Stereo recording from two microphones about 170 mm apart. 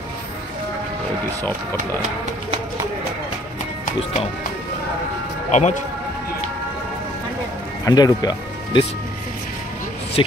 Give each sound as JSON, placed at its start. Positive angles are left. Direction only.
{"t": 5.5, "sound": "speech", "side_deg": 45}
{"t": 7.8, "sound": "speech", "side_deg": 20}
{"t": 10.2, "sound": "a sound", "side_deg": 30}